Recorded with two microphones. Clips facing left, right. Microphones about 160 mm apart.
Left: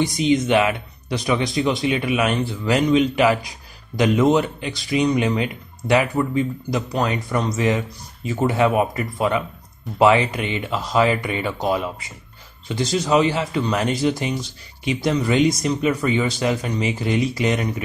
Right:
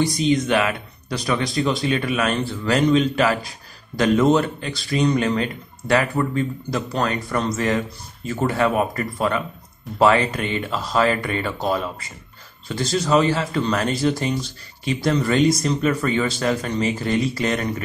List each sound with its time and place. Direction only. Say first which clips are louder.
0.0 s speech: left 1 dB; 20° left (ahead or behind)